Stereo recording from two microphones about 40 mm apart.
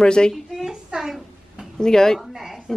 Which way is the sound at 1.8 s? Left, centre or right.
Centre.